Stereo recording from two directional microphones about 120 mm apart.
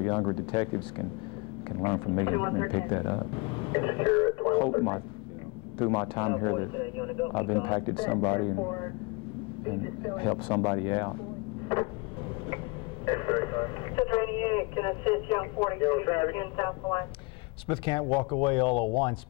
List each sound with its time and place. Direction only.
0.0 s speech: 40° left (ahead or behind)
13.0 s radio: 40° left (ahead or behind)
17.6 s speech: 45° left (ahead or behind)